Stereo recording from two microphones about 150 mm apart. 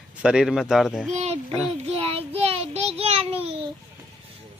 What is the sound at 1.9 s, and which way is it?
Child singing, 40° right (ahead or behind).